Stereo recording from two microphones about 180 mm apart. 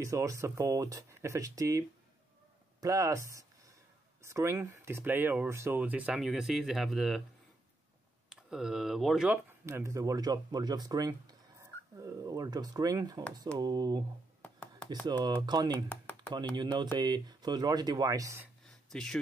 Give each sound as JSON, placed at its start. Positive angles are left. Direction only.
{"t": 0.0, "sound": "speech", "side_deg": -15}
{"t": 8.3, "sound": "speech", "side_deg": -5}
{"t": 9.7, "sound": "speech", "side_deg": -15}
{"t": 14.4, "sound": "chopping", "side_deg": 5}
{"t": 15.0, "sound": "speech", "side_deg": -25}
{"t": 17.0, "sound": "speech", "side_deg": -20}
{"t": 18.9, "sound": "speech", "side_deg": 5}